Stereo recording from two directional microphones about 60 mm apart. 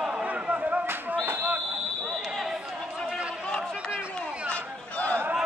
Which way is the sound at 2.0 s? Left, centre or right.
Centre.